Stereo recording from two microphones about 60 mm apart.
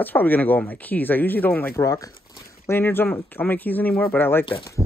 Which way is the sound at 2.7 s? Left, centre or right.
Left.